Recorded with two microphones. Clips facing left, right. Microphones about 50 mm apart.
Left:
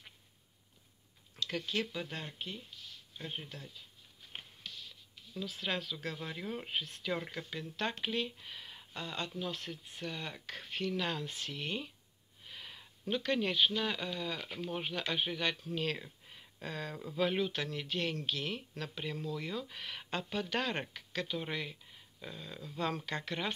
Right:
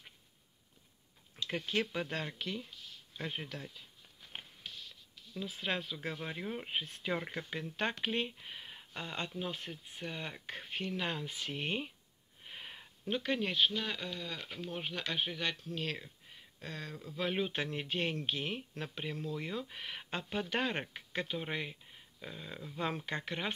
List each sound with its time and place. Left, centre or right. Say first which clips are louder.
1.4 s speech: right 1 dB; right
4.3 s a sound: even; centre
5.4 s speech: even; right
6.7 s speech: even; right
7.2 s speech: right 2 dB; right; by 11.4 s centre
11.5 s speech: right 3 dB; right
12.4 s a sound: right 1 dB; right
13.1 s speech: left 1 dB; centre
17.4 s speech: even; right
20.9 s speech: even; right